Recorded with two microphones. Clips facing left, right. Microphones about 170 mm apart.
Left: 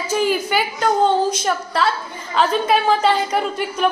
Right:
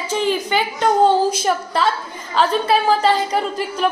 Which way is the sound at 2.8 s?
35° right (ahead or behind).